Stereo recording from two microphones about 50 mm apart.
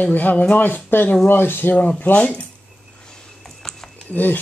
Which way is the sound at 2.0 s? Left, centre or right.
Left.